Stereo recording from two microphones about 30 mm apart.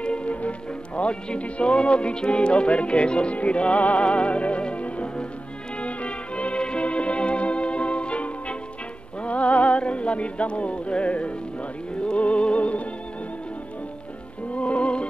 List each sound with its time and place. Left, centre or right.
0.0 s music: left
0.3 s speech: left
3.3 s music: left
14.5 s music: left